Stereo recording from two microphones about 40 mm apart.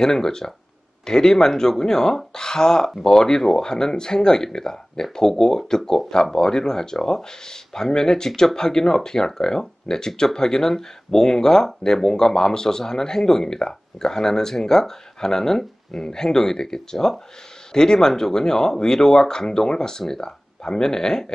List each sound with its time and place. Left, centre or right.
0.0 s speech: centre